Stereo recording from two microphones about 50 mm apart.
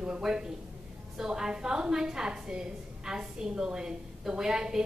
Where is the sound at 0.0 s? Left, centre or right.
Centre.